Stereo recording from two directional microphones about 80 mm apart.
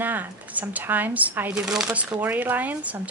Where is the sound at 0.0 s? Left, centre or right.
Right.